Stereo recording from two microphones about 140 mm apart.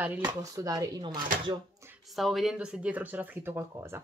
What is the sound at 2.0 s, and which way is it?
Speech, centre (ahead or behind).